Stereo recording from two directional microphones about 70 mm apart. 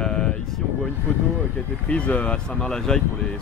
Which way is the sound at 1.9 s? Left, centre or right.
Centre.